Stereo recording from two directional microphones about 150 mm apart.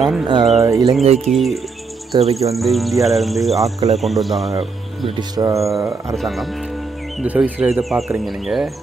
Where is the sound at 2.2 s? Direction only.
45° right (ahead or behind).